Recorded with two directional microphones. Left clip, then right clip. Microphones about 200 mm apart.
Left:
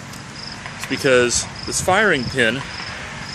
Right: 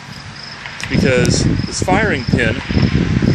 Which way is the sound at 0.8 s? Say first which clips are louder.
Right 1 dB; 5° left (ahead or behind).